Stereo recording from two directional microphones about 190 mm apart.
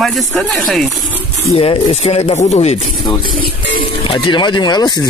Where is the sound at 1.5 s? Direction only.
30° left (ahead or behind).